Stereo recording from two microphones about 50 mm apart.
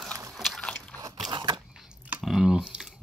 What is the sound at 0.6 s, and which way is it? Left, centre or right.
Biting, centre.